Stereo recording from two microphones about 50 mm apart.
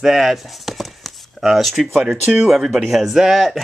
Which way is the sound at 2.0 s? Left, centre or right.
Centre.